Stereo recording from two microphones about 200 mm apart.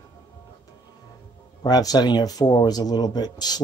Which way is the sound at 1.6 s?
20° left (ahead or behind).